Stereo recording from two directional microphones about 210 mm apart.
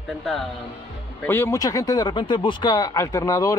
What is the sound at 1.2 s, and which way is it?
Speech, 10° left (ahead or behind).